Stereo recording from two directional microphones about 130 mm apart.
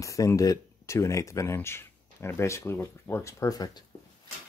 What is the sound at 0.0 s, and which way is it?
Speech, 25° left (ahead or behind).